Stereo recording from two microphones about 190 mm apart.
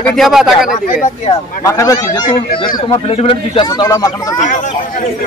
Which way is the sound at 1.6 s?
15° left (ahead or behind).